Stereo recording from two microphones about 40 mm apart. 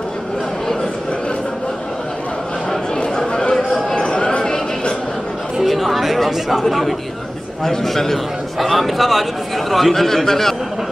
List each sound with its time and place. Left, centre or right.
3.2 s chatter: centre
3.9 s a sound: left
5.6 s chatter: centre
7.6 s a man's voice: centre